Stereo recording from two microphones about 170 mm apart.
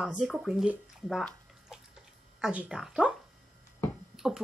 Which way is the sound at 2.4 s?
5° right (ahead or behind).